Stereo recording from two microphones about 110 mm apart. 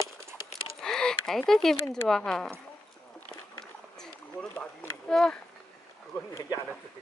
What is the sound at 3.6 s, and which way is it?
Rowboat, 5° left (ahead or behind).